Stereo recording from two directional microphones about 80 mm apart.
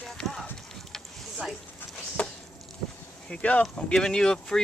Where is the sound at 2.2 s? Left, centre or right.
Centre.